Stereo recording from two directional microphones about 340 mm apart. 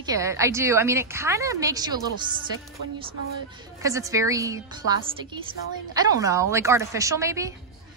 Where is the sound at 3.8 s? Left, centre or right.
Centre.